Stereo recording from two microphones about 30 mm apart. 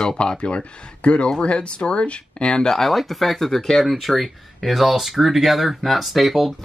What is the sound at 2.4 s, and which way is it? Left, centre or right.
Speech, left.